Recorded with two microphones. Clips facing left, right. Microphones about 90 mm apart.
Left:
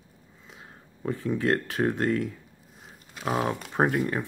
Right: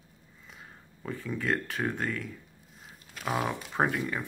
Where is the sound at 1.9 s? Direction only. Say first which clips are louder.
Left 8 dB; 65° left (ahead or behind).